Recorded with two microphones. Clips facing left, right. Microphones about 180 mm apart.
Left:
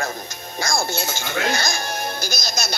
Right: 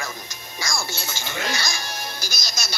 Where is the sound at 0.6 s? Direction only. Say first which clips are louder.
Left 7 dB; 55° left (ahead or behind).